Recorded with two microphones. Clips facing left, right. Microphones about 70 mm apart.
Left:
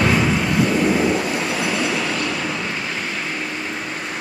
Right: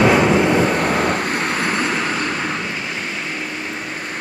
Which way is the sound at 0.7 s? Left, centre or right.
Right.